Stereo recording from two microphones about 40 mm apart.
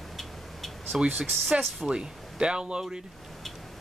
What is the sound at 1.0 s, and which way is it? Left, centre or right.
Speech, centre.